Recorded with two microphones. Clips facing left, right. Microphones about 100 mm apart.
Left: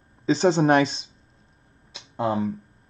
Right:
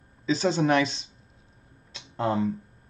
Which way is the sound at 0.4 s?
30° left (ahead or behind).